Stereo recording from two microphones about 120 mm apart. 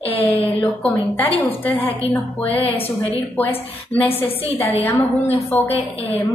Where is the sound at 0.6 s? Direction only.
15° left (ahead or behind).